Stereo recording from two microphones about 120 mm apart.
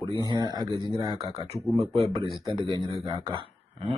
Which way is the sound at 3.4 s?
55° right (ahead or behind).